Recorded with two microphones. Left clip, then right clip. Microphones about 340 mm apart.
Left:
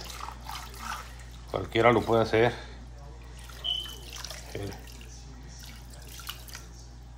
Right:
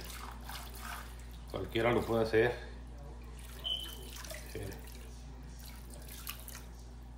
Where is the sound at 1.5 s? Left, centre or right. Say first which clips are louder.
Left 9 dB; left.